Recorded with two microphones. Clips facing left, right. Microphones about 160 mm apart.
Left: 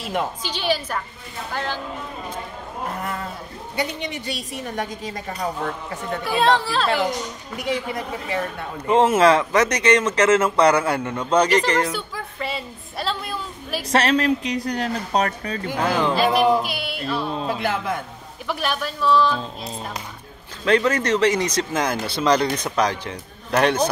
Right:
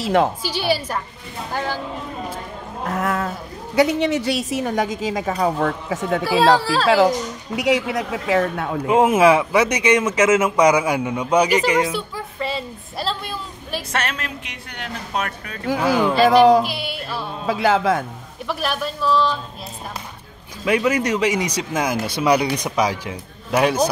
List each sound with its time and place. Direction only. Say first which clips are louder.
0.0 s a woman's voice: right 8 dB; 85° right
0.4 s a man's voice: right 2 dB; 10° right (ahead or behind)
2.9 s a woman's voice: right 9 dB; 90° right
6.2 s speech: right 3 dB; 5° right (ahead or behind)
6.9 s a woman's voice: right 7 dB; 90° right
8.8 s a man's voice: right 1 dB; 10° right (ahead or behind)
13.9 s speech: left 10 dB; 35° left (ahead or behind)
15.8 s a man's voice: right 3 dB; 10° right (ahead or behind)
16.3 s a woman's voice: right 7 dB; 90° right
16.6 s speech: even; centre (ahead or behind)
17.5 s a woman's voice: right 11 dB; 90° right
18.5 s speech: right 1 dB; centre (ahead or behind)
20.6 s a man's voice: even; 10° right (ahead or behind)